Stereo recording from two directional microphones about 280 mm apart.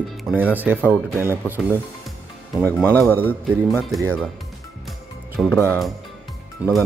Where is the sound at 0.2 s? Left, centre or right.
Centre.